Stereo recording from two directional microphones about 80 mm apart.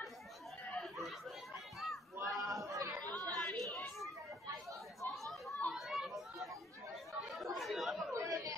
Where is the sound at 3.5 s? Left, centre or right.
Centre.